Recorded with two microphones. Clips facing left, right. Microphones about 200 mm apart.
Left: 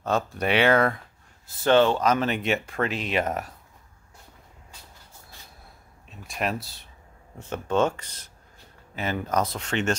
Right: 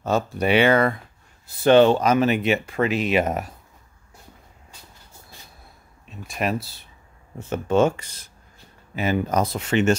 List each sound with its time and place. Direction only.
0.0 s speech: 5° right (ahead or behind)
1.6 s speech: 15° right (ahead or behind)
6.0 s speech: centre (ahead or behind)